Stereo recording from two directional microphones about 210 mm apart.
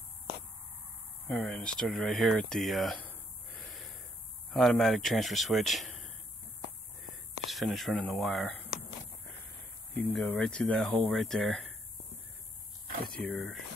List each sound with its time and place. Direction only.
1.2 s speech: 5° left (ahead or behind)
7.5 s speech: centre (ahead or behind)
10.1 s speech: 5° left (ahead or behind)
12.8 s speech: 45° right (ahead or behind)
13.2 s speech: centre (ahead or behind)